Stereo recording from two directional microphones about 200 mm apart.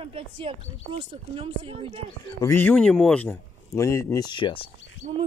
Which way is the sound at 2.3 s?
15° left (ahead or behind).